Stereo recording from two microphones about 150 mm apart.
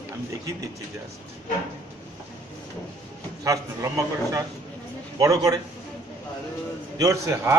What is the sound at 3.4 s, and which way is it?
A man's voice, 20° right (ahead or behind).